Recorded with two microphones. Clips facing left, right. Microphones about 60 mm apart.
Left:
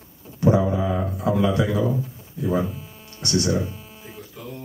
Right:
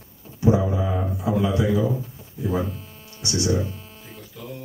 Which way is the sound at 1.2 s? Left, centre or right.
Left.